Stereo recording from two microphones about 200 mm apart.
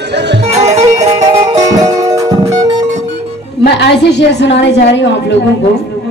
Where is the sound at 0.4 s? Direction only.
35° right (ahead or behind).